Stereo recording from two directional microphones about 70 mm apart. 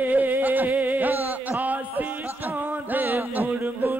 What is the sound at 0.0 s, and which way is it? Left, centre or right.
Music, right.